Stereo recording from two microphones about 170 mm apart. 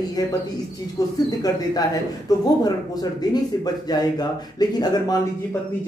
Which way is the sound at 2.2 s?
20° left (ahead or behind).